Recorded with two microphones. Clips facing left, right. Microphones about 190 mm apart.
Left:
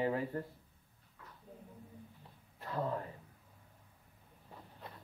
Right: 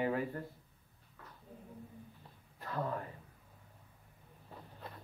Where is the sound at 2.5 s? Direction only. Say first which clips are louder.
Left 1 dB; 25° left (ahead or behind).